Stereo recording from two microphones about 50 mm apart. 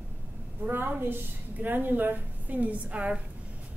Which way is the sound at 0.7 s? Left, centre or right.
Right.